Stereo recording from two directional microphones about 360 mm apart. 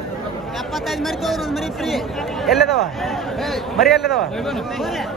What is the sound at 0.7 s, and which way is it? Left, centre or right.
Speech, centre.